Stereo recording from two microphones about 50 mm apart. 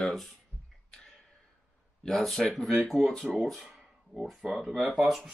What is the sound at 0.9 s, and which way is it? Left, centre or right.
Tick-tock, centre.